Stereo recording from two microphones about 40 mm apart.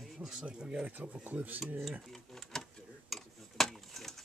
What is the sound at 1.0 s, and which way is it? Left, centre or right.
Speech, right.